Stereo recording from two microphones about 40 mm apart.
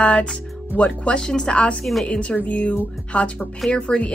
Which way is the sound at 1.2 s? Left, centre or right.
Centre.